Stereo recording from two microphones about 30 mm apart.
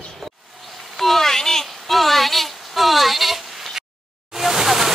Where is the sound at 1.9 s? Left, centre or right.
Centre.